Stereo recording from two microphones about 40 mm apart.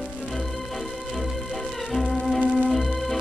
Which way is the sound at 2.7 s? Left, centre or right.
Centre.